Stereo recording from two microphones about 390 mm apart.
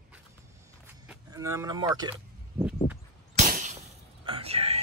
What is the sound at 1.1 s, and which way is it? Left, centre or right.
Speech, centre.